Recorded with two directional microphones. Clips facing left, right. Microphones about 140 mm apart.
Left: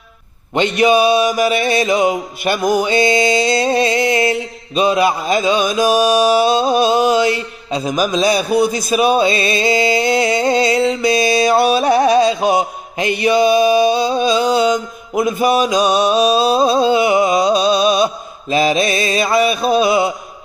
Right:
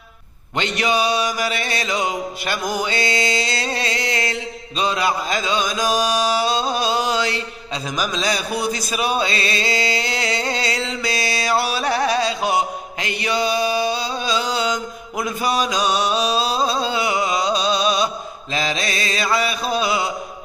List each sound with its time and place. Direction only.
0.6 s mantra: 15° left (ahead or behind)
8.9 s music: 15° left (ahead or behind)
15.2 s mantra: 15° left (ahead or behind)